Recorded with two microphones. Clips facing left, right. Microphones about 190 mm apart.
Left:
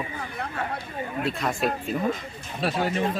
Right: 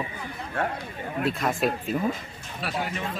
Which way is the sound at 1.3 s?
Centre (ahead or behind).